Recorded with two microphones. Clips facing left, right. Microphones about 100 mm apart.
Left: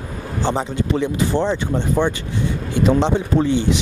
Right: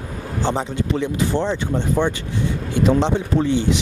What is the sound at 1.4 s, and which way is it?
Speech, 30° left (ahead or behind).